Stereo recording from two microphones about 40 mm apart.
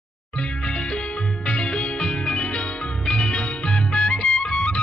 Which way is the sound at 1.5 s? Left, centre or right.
Left.